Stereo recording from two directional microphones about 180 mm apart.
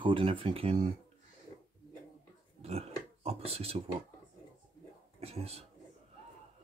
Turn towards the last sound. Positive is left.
turn(degrees=-35)  # may be behind; listen again after turning